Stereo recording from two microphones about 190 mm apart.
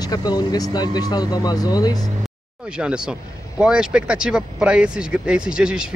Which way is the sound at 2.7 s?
5° right (ahead or behind).